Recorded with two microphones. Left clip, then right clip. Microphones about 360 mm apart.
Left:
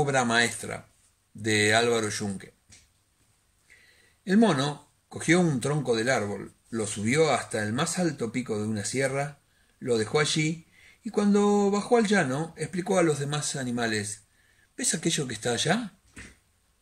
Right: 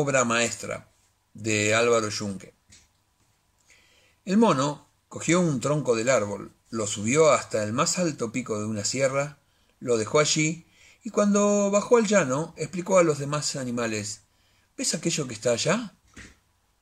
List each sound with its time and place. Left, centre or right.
0.0 s speech: centre
4.2 s speech: centre